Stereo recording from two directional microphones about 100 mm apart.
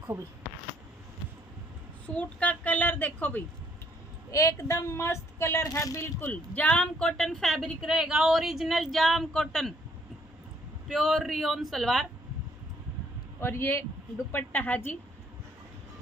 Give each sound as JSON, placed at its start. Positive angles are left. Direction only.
{"t": 2.0, "sound": "a woman's voice", "side_deg": 15}
{"t": 4.3, "sound": "speech", "side_deg": 30}
{"t": 6.3, "sound": "speech", "side_deg": 15}
{"t": 10.9, "sound": "speech", "side_deg": 0}
{"t": 13.4, "sound": "speech", "side_deg": 25}